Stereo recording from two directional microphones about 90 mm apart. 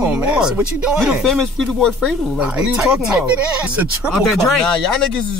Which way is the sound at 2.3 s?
10° right (ahead or behind).